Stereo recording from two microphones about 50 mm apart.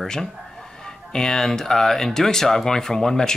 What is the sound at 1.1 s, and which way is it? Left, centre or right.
Speech, centre.